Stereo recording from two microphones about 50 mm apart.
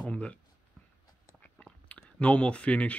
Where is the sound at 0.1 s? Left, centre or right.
Left.